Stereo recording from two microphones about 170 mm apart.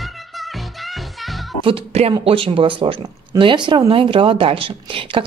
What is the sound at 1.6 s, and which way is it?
Speech, 35° right (ahead or behind).